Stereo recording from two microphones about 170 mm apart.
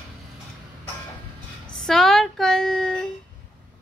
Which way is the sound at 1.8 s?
Centre (ahead or behind).